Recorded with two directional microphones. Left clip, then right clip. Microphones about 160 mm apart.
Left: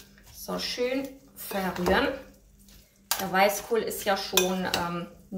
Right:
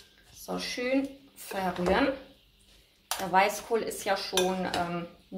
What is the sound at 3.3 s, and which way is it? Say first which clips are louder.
Speech: left 1 dB; 40° right (ahead or behind).